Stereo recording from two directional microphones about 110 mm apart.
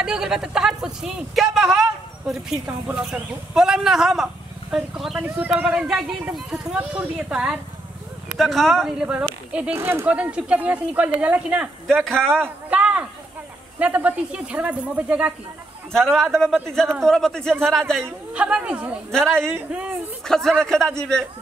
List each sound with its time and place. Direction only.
0.0 s speech: 5° right (ahead or behind)
9.8 s speech: 25° right (ahead or behind)
10.0 s speech: 10° right (ahead or behind)
11.9 s speech: 5° left (ahead or behind)
12.6 s a sound: 10° right (ahead or behind)
13.7 s speech: 10° right (ahead or behind)
15.9 s speech: 5° left (ahead or behind)
18.3 s speech: 10° right (ahead or behind)
20.2 s speech: 5° left (ahead or behind)